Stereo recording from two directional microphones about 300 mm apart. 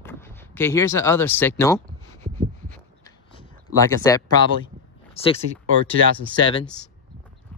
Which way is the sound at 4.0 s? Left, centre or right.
Centre.